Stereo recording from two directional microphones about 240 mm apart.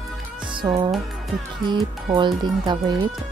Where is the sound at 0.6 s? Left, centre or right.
Centre.